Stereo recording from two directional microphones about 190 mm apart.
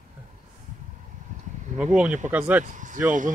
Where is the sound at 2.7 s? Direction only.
40° right (ahead or behind).